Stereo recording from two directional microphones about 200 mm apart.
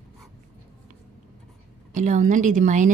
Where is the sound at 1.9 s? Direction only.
40° right (ahead or behind).